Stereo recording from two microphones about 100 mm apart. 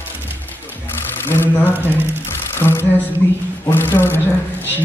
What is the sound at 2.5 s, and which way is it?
Speech, 25° left (ahead or behind).